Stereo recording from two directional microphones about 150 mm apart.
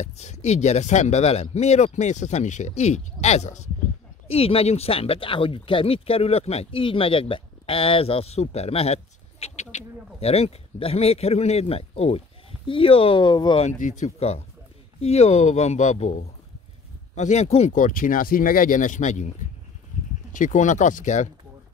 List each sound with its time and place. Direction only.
0.0 s speech: 50° left (ahead or behind)
4.3 s speech: 40° left (ahead or behind)
13.6 s speech: 55° left (ahead or behind)
17.7 s speech: 65° left (ahead or behind)
20.3 s speech: 60° left (ahead or behind)